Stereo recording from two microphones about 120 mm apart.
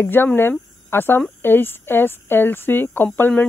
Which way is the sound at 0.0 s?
15° left (ahead or behind).